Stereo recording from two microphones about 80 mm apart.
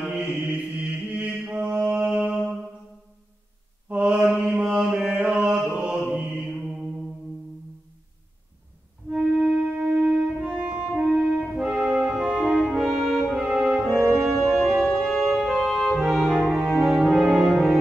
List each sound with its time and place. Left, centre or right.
0.2 s chant: centre
1.1 s mantra: right
1.4 s mantra: centre
1.9 s music: centre
3.9 s mantra: centre
9.1 s music: centre
11.5 s brass instrument: centre
14.2 s organ: centre
16.6 s music: centre